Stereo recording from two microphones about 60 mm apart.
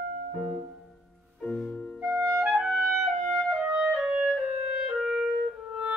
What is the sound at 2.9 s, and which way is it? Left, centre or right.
Music, centre.